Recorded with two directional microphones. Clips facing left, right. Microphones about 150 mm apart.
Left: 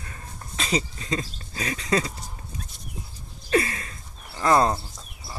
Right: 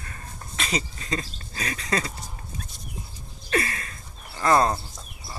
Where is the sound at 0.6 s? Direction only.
25° left (ahead or behind).